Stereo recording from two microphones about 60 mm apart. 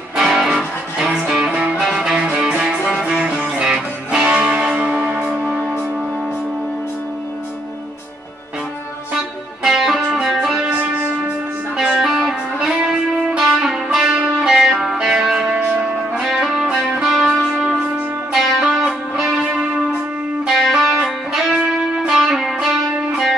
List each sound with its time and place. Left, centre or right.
0.1 s music: centre
1.5 s music: centre
9.6 s music: centre
11.7 s music: centre
18.3 s music: centre
18.6 s music: centre
20.4 s music: centre
20.8 s music: centre